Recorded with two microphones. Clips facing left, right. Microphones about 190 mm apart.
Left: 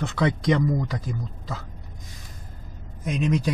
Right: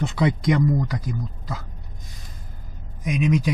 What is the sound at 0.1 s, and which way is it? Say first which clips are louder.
Speech: even; 10° right (ahead or behind).